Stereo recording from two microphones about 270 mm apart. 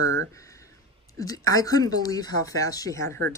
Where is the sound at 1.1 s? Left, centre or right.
Centre.